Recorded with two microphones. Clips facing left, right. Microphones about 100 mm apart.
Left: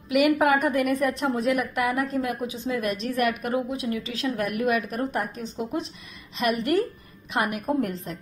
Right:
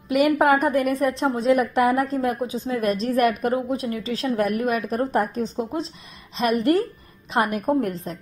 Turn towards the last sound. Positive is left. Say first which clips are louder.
# right 4 dB
turn(degrees=-35)  # may be behind; listen again after turning